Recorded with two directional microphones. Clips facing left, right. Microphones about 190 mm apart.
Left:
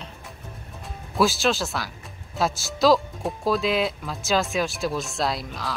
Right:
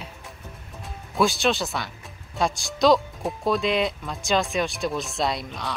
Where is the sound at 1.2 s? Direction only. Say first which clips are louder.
Even; centre (ahead or behind).